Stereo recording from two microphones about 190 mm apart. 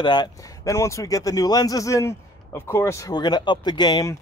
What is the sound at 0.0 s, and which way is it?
A man's voice, 20° left (ahead or behind).